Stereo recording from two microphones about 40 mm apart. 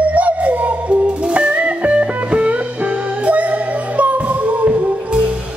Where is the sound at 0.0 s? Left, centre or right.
Right.